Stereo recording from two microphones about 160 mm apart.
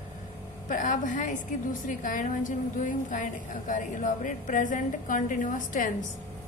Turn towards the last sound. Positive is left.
turn(degrees=55)  # may be behind; listen again after turning